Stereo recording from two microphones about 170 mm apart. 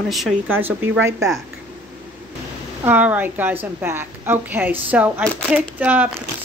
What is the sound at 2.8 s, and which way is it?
Speech, 10° right (ahead or behind).